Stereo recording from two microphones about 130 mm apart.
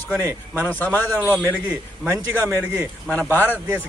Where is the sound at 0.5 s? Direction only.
15° left (ahead or behind).